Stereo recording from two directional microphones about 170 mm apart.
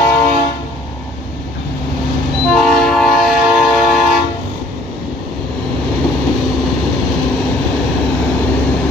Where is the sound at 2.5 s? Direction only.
Centre (ahead or behind).